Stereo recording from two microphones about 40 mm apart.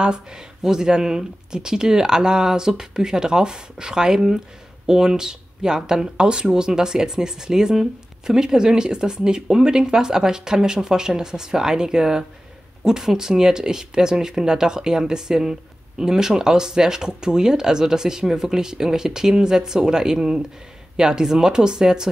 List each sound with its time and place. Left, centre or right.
0.0 s speech: centre